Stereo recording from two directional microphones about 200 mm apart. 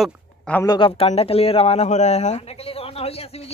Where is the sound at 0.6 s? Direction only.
25° left (ahead or behind).